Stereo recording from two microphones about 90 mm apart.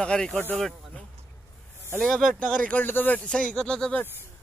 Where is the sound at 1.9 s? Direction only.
5° left (ahead or behind).